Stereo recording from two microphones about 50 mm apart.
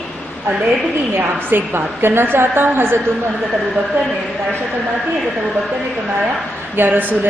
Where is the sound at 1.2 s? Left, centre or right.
Right.